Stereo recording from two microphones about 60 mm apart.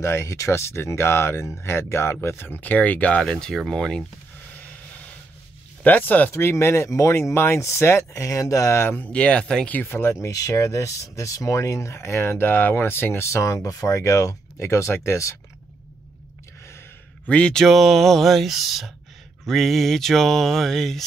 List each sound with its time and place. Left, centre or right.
0.0 s speech: left; by 4.0 s centre
5.9 s speech: left
6.3 s speech: left
8.8 s speech: left
9.1 s speech: centre
9.8 s speech: left
10.2 s speech: left
13.6 s speech: left
17.3 s speech: centre
17.6 s speech: centre